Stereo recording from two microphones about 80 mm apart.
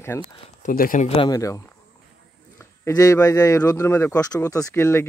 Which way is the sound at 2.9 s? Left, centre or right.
Left.